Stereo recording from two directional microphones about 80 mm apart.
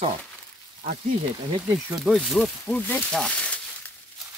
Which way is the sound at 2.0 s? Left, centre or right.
Centre.